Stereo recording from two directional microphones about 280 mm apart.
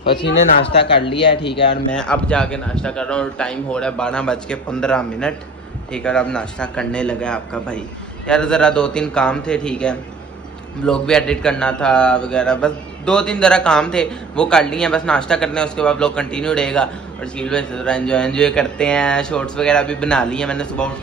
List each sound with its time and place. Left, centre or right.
0.0 s speech: left
1.9 s a man's voice: centre